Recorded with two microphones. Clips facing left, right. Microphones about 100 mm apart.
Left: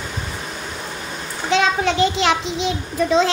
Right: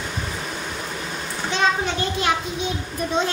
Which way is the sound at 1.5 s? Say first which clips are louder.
Left 4 dB; 90° left.